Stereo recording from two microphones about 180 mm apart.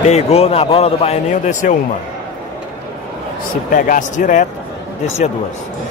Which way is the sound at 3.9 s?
45° left (ahead or behind).